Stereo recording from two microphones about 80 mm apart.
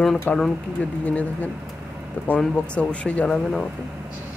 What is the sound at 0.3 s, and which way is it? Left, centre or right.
Speech, centre.